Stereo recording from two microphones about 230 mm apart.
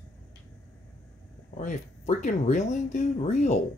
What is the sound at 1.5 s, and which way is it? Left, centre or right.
Speech, left.